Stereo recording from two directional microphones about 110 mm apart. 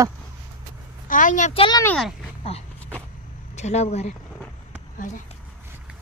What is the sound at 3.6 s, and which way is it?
Speech, 85° left.